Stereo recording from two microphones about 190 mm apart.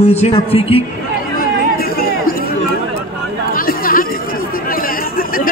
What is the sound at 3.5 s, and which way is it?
Chatter, 50° left (ahead or behind).